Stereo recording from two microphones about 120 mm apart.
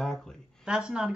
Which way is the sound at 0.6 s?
5° right (ahead or behind).